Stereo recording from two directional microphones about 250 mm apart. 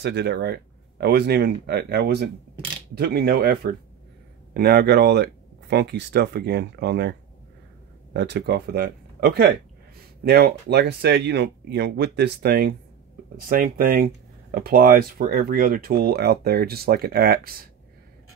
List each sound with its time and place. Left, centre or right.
0.0 s speech: right